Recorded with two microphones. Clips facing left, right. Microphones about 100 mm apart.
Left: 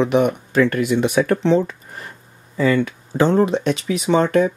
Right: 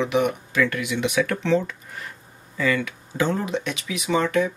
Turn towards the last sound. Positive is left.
turn(degrees=35)  # may be behind; listen again after turning